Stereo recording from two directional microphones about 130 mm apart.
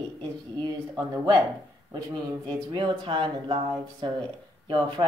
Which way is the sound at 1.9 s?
30° right (ahead or behind).